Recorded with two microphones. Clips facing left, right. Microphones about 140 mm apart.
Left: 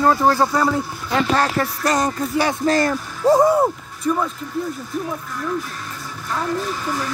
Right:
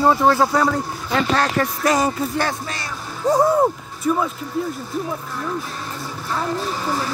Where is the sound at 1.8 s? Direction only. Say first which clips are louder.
Right 2 dB; 10° right (ahead or behind).